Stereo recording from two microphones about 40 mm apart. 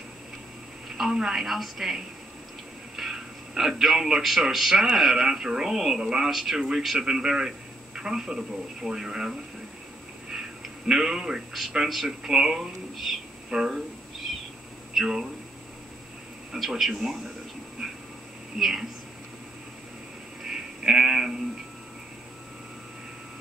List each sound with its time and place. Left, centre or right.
0.8 s telephone: centre
1.1 s a woman's voice: centre
3.0 s a man's voice: centre
10.9 s a man's voice: centre
13.5 s a sound: centre
16.5 s a woman's voice: centre
18.6 s a man's voice: centre
20.4 s sheep: centre